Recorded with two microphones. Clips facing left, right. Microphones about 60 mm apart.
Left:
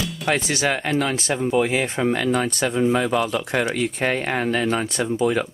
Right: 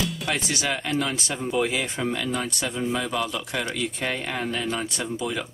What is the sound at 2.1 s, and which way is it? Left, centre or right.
Speech, left.